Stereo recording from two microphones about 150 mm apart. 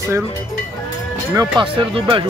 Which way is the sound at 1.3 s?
30° right (ahead or behind).